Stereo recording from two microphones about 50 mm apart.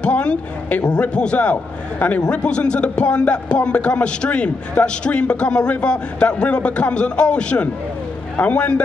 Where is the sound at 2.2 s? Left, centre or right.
Left.